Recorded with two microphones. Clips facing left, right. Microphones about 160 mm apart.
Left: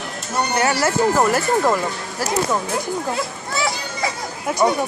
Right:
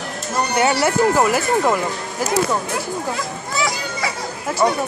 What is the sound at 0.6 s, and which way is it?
Speech, 20° right (ahead or behind).